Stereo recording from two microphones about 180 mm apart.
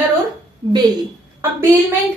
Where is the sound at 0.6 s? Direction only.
25° right (ahead or behind).